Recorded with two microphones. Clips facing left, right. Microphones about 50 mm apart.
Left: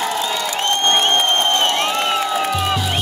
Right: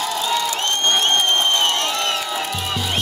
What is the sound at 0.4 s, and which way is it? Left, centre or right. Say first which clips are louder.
Crowd: left 2 dB; left.